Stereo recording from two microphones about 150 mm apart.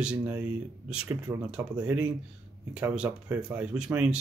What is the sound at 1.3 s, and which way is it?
Speech, 20° right (ahead or behind).